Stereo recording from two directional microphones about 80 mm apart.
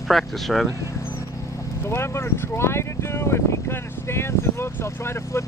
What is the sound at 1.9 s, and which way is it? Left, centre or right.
Speech, left.